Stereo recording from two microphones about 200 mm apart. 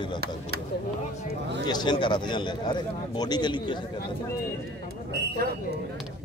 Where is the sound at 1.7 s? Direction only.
20° left (ahead or behind).